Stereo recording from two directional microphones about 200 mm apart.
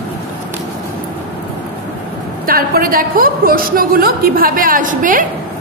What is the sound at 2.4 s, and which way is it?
A woman's voice, 45° right (ahead or behind).